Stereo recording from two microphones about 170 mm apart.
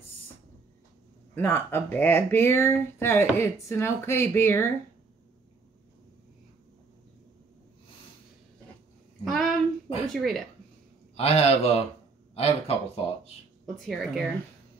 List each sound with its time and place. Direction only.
1.3 s speech: 10° left (ahead or behind)
9.2 s a sound: centre (ahead or behind)
10.0 s speech: centre (ahead or behind)
11.1 s speech: 35° left (ahead or behind)
13.7 s speech: centre (ahead or behind)